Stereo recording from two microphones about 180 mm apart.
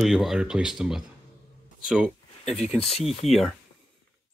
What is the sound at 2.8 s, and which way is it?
Speech, 35° left (ahead or behind).